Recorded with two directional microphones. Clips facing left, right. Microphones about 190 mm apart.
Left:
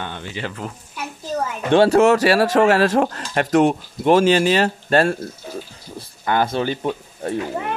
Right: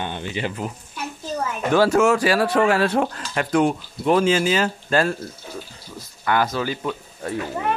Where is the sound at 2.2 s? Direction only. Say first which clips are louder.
Left 3 dB; 80° left.